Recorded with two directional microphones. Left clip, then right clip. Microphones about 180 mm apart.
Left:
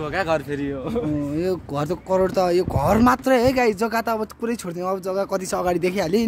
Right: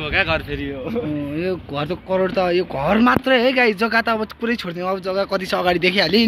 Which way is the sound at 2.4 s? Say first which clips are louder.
Right 1 dB; 30° left (ahead or behind).